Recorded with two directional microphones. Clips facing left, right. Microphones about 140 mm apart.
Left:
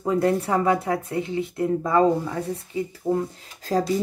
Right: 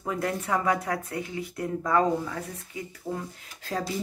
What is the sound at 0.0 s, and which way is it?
Speech, 30° left (ahead or behind).